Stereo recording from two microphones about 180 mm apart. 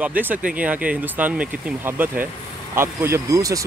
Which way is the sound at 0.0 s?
10° right (ahead or behind).